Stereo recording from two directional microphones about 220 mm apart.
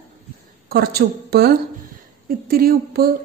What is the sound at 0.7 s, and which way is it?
A woman's voice, 45° right (ahead or behind).